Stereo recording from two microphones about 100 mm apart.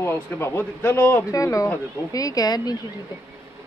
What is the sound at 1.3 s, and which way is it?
A woman's voice, 35° left (ahead or behind).